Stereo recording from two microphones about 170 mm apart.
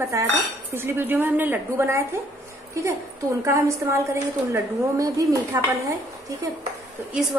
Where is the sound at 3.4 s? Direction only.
15° right (ahead or behind).